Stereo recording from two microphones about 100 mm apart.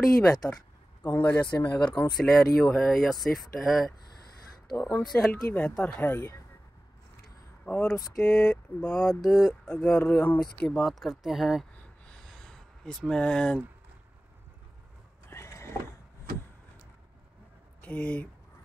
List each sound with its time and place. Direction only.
0.4 s speech: 20° left (ahead or behind)
1.4 s speech: 50° left (ahead or behind)
2.1 s speech: 5° left (ahead or behind)
5.0 s speech: 5° left (ahead or behind)
5.3 s speech: 20° left (ahead or behind)
7.6 s speech: 15° left (ahead or behind); by 11.6 s 5° right (ahead or behind)
11.7 s a sound: 10° left (ahead or behind)
15.2 s vehicle: 25° left (ahead or behind)
17.8 s speech: 15° left (ahead or behind)